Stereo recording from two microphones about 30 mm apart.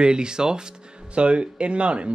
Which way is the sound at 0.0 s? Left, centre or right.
Right.